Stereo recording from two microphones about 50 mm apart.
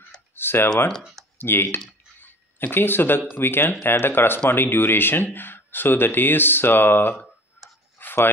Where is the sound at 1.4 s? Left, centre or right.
Left.